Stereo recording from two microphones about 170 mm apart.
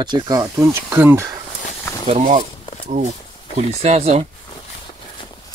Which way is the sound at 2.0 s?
40° right (ahead or behind).